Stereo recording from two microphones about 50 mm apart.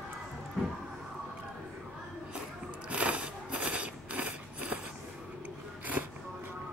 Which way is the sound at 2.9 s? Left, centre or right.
Right.